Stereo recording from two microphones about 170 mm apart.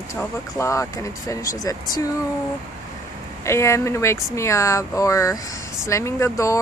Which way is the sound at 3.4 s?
15° left (ahead or behind).